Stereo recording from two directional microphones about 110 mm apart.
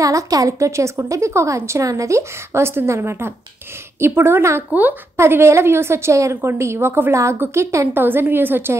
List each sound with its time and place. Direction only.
0.0 s a woman's voice: 30° right (ahead or behind)